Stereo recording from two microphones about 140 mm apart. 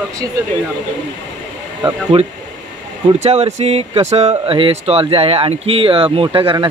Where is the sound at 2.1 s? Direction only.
40° right (ahead or behind).